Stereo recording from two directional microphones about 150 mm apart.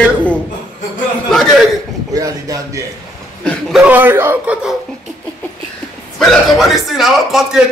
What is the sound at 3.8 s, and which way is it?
Speech, 10° right (ahead or behind).